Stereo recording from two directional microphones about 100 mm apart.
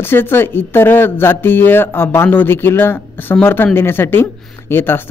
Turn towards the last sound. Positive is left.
turn(degrees=20)  # may be behind; listen again after turning